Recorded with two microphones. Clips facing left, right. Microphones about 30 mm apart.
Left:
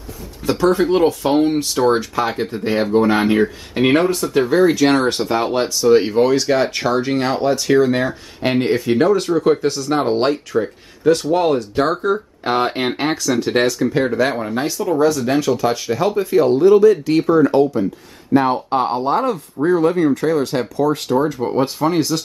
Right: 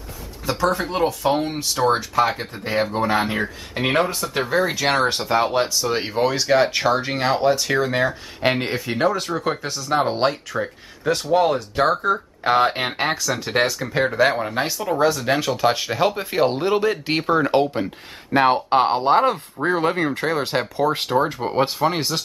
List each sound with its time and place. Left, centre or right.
0.5 s speech: centre; by 22.2 s right